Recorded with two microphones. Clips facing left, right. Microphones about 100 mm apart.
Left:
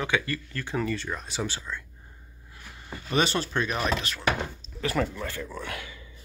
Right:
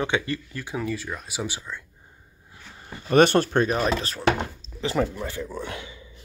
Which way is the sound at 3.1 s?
55° right (ahead or behind).